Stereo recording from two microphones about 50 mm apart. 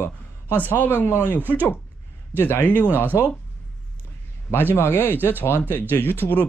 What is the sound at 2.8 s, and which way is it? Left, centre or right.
Speech, right.